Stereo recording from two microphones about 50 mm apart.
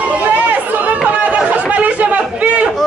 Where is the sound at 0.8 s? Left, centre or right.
Right.